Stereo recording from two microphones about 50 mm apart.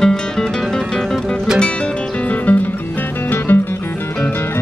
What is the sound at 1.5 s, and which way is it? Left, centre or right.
Music, centre.